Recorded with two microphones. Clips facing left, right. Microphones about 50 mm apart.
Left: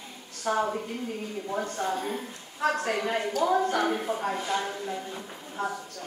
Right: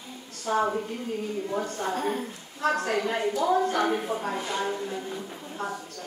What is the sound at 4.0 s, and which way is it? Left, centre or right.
Speech, centre.